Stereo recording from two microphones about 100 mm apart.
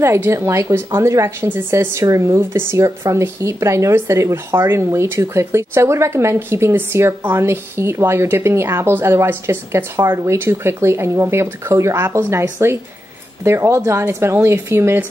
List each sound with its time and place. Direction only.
0.0 s speech: 25° right (ahead or behind)